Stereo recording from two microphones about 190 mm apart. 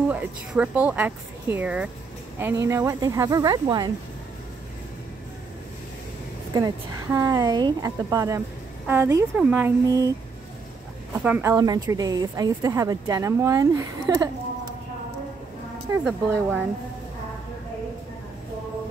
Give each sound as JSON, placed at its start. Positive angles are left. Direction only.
{"t": 0.1, "sound": "a woman's voice", "side_deg": -10}
{"t": 6.5, "sound": "a woman's voice", "side_deg": -15}
{"t": 11.2, "sound": "a woman's voice", "side_deg": -10}
{"t": 16.0, "sound": "a woman's voice", "side_deg": -5}